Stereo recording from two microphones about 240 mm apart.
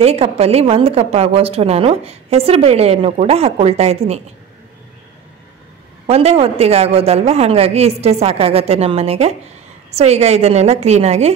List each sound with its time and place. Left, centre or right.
0.0 s a woman's voice: right
6.0 s a woman's voice: right